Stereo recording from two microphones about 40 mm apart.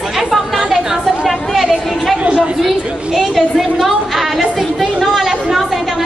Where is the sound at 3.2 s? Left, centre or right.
Centre.